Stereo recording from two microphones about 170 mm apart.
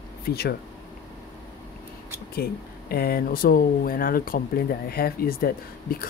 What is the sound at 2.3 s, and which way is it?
Speech, 65° left (ahead or behind).